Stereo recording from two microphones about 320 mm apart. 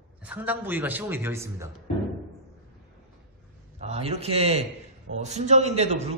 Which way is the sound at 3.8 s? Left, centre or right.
Centre.